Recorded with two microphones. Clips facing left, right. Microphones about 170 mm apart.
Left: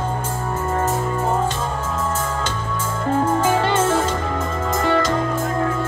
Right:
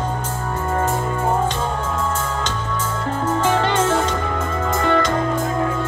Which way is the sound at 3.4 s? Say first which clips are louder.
Even; 5° left (ahead or behind).